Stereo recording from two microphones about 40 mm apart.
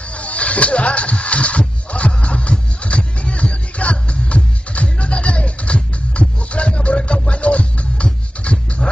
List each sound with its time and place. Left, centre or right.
0.1 s music: left